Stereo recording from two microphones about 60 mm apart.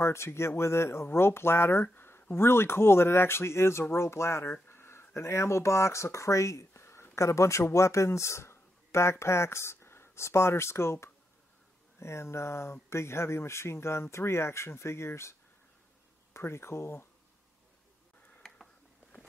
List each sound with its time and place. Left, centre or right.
0.0 s speech: left
16.3 s speech: left